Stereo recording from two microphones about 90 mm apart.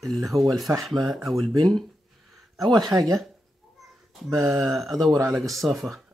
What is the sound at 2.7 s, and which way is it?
Speech, 50° right (ahead or behind).